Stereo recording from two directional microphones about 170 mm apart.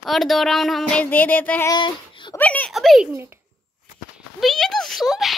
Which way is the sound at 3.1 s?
15° right (ahead or behind).